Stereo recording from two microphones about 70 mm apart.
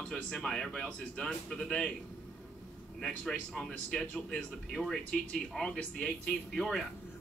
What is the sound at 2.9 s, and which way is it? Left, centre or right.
Speech, centre.